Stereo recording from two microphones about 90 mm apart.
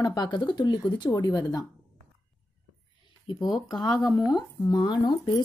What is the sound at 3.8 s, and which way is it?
Speech, 45° left (ahead or behind).